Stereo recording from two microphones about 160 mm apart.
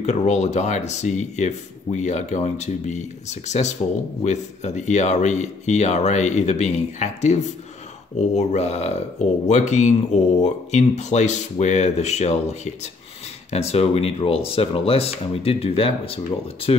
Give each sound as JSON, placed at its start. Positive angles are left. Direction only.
{"t": 0.0, "sound": "speech", "side_deg": 45}